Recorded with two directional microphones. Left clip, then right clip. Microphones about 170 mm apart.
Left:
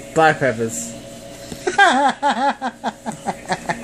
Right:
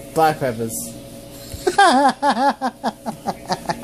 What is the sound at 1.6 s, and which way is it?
Speech, 30° right (ahead or behind).